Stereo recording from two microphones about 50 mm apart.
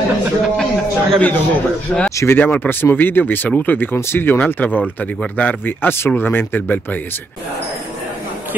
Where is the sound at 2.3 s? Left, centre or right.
Left.